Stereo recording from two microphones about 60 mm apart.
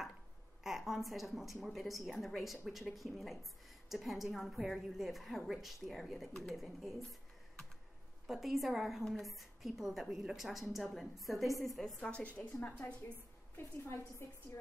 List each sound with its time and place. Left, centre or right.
0.7 s speech: centre
8.3 s speech: centre
12.0 s a woman's voice: centre
13.6 s a woman's voice: left